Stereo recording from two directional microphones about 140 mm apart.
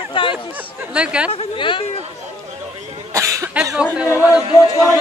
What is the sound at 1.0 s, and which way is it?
Speech, 10° right (ahead or behind).